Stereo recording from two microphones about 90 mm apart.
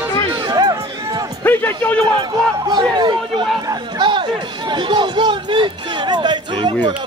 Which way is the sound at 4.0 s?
60° right (ahead or behind).